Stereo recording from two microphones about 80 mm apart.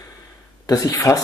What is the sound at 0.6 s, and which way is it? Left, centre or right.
Speech, left.